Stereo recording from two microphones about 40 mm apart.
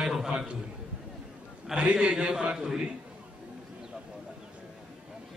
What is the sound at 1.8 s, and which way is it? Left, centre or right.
Speech, right.